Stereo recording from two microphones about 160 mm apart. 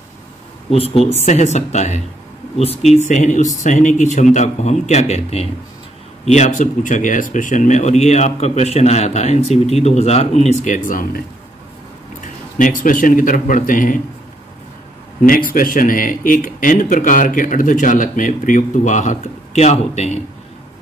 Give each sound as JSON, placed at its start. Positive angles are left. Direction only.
{"t": 0.7, "sound": "speech", "side_deg": 40}
{"t": 12.2, "sound": "speech", "side_deg": 55}
{"t": 15.2, "sound": "speech", "side_deg": 60}